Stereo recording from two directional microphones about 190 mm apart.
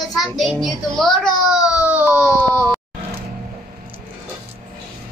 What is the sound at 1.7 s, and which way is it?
Baby cry, 5° right (ahead or behind).